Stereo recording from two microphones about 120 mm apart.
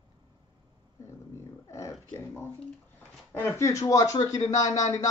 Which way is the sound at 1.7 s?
25° left (ahead or behind).